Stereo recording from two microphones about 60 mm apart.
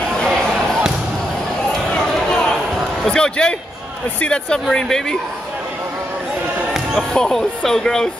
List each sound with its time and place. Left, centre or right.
0.1 s basketball bounce: centre
2.0 s a sound: centre
3.1 s speech: centre
7.0 s speech: centre